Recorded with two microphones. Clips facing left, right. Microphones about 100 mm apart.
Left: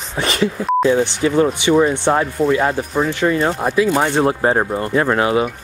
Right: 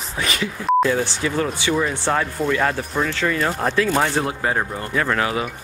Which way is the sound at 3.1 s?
25° left (ahead or behind).